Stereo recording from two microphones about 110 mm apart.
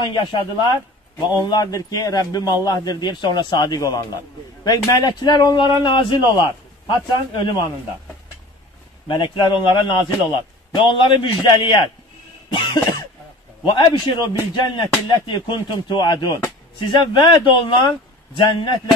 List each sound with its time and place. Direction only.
0.0 s a man's voice: 40° left (ahead or behind)
9.0 s speech: 45° left (ahead or behind)
12.4 s cough: 40° left (ahead or behind)
13.7 s speech: 45° left (ahead or behind)